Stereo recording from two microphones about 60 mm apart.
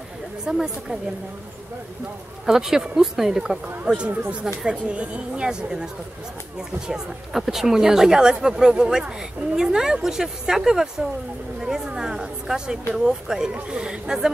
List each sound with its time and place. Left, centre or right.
0.5 s speech: centre
2.4 s speech: centre
3.6 s speech: centre
6.9 s speech: centre